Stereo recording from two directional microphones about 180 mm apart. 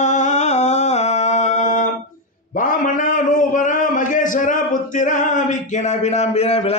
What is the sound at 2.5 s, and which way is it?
A man's voice, 45° left (ahead or behind).